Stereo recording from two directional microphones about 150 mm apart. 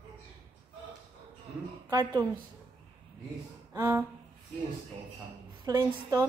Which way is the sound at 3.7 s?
15° right (ahead or behind).